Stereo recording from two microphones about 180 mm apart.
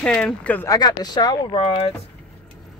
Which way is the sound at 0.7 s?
20° left (ahead or behind).